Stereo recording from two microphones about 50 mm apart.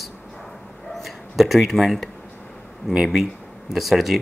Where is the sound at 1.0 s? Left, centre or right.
Centre.